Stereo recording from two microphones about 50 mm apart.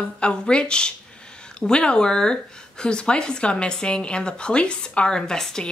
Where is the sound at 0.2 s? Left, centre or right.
Centre.